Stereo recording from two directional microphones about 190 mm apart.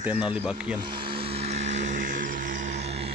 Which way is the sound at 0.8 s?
25° right (ahead or behind).